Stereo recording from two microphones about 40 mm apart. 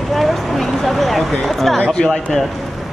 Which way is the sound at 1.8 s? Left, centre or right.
Centre.